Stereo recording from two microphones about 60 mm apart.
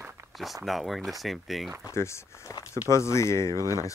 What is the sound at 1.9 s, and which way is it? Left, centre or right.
Speech, left.